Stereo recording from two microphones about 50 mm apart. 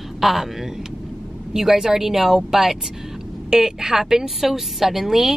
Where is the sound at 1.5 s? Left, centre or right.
Centre.